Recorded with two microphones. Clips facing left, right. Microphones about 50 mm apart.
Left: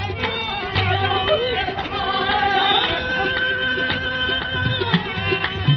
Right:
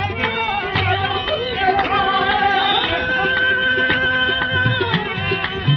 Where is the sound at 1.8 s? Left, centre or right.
Right.